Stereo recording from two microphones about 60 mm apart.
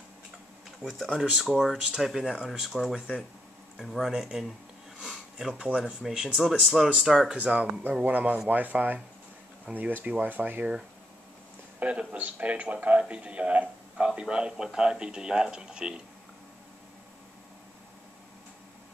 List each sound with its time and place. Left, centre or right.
0.8 s speech: centre
1.3 s speech: centre
5.0 s sniff: centre
5.6 s a man's voice: centre
11.8 s a man's voice: right